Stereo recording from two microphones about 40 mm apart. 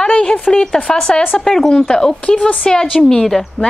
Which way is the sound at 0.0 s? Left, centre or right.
Left.